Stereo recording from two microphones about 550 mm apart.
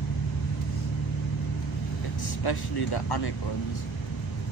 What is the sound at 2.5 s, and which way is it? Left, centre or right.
Speech, left.